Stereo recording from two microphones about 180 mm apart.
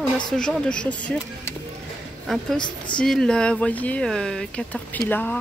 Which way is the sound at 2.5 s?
25° left (ahead or behind).